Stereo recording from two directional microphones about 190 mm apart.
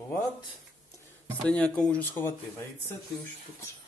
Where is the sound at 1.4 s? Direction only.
5° left (ahead or behind).